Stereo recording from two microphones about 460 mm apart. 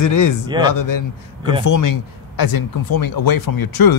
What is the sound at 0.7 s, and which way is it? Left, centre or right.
Speech, left.